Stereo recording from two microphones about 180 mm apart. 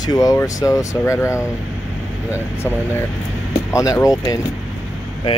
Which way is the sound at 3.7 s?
20° left (ahead or behind).